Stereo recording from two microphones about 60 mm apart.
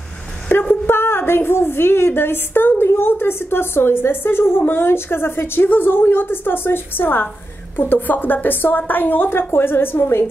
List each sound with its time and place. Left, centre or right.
0.5 s a woman's voice: left